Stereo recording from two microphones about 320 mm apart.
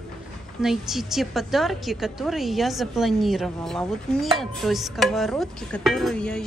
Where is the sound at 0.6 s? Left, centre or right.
Centre.